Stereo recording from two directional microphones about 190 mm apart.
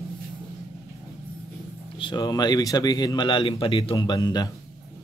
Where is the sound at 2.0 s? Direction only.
25° left (ahead or behind).